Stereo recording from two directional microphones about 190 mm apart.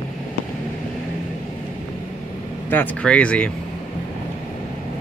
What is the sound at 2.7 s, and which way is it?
Speech, 10° left (ahead or behind).